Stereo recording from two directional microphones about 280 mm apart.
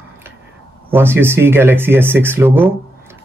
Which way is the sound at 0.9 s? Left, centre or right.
Centre.